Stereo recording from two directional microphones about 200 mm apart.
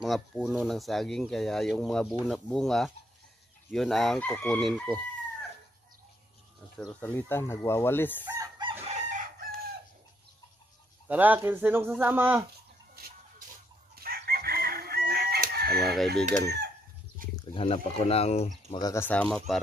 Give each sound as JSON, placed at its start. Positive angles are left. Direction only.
{"t": 0.0, "sound": "speech", "side_deg": 0}
{"t": 6.8, "sound": "speech", "side_deg": 5}
{"t": 8.3, "sound": "chicken", "side_deg": -20}
{"t": 8.8, "sound": "chicken", "side_deg": -35}
{"t": 11.1, "sound": "speech", "side_deg": -10}
{"t": 13.9, "sound": "chicken", "side_deg": -50}
{"t": 15.8, "sound": "speech", "side_deg": 0}
{"t": 17.2, "sound": "a sound", "side_deg": -45}
{"t": 17.6, "sound": "speech", "side_deg": 30}
{"t": 18.8, "sound": "speech", "side_deg": 15}